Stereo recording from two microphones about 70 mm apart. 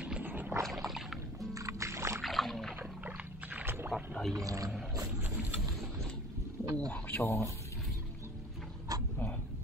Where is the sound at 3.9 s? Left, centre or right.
Centre.